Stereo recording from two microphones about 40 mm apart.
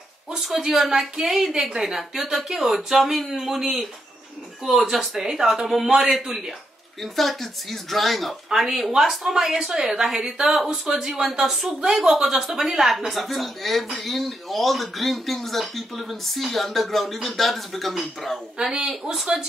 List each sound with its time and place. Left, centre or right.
0.4 s speech: centre
7.0 s speech: centre
18.6 s speech: centre